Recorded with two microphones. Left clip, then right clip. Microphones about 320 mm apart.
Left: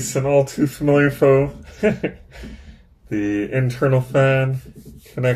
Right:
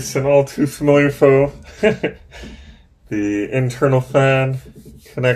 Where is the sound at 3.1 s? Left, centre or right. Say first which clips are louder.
Right 2 dB; centre.